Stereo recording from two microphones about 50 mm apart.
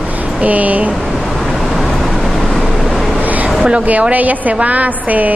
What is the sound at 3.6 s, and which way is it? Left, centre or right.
A woman's voice, right.